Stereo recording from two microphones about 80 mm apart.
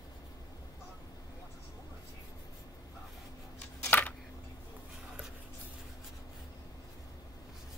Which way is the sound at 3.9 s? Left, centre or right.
Left.